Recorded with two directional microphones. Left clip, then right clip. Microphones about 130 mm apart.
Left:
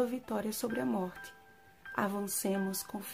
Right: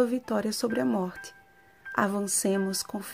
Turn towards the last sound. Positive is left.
turn(degrees=-40)  # may be behind; listen again after turning